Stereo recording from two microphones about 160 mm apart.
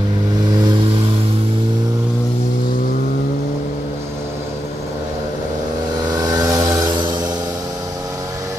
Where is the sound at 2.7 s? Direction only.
60° left (ahead or behind).